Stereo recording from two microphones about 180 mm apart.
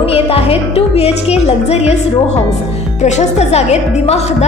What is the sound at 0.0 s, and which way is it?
Music, 35° left (ahead or behind).